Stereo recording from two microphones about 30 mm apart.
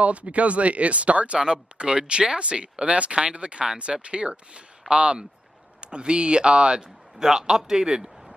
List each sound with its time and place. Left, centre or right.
0.0 s speech: right
1.4 s speech: right
7.2 s a man's voice: right